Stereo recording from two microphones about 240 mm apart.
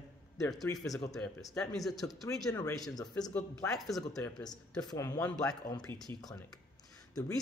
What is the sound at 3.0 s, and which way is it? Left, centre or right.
Speech, centre.